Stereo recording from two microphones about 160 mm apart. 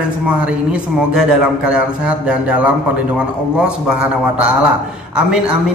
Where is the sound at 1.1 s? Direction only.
5° right (ahead or behind).